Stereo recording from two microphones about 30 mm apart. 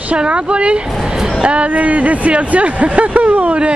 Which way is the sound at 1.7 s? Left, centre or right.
Right.